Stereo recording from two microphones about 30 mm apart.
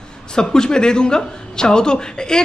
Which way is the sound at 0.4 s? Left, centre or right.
Left.